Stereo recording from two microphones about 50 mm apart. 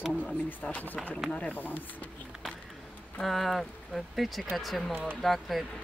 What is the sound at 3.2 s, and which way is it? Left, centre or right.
Speech, centre.